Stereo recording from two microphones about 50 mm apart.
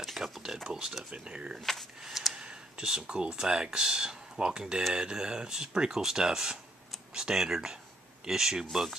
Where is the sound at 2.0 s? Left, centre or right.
Centre.